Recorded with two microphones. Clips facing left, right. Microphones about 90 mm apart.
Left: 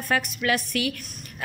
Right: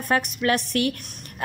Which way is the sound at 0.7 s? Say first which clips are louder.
Right 4 dB; 45° right (ahead or behind).